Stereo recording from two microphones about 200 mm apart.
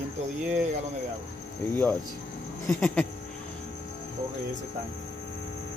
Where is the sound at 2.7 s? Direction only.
5° left (ahead or behind).